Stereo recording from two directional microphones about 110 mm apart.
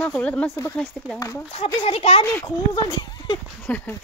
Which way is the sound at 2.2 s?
20° left (ahead or behind).